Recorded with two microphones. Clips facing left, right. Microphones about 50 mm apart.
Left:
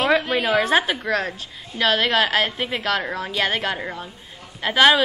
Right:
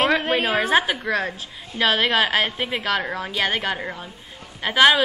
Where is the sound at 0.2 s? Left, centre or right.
Right.